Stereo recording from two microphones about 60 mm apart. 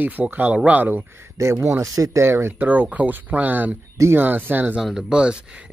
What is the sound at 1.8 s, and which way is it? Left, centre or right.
Speech, right.